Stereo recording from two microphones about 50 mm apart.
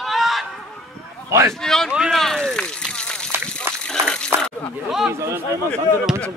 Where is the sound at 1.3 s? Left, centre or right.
Right.